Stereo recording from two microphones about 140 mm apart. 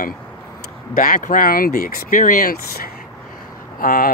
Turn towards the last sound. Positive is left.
turn(degrees=90)